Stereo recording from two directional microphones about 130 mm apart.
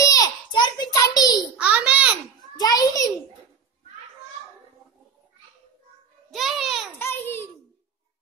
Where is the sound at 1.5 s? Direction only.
10° right (ahead or behind).